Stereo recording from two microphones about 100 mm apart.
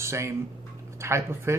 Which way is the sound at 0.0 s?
25° right (ahead or behind).